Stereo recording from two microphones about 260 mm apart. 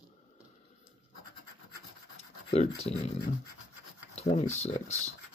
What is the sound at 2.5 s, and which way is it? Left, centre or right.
Speech, left.